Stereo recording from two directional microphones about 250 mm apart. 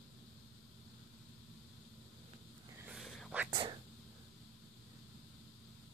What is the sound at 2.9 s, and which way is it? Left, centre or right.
Whispering, centre.